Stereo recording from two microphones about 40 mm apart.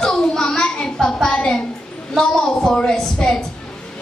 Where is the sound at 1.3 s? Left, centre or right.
Centre.